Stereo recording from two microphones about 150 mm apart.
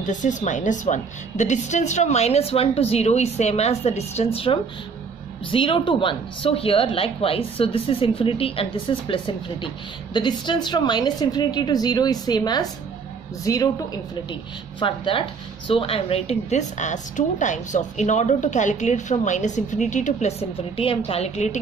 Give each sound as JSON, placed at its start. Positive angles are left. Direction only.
{"t": 0.0, "sound": "a woman's voice", "side_deg": 55}
{"t": 14.8, "sound": "speech", "side_deg": 35}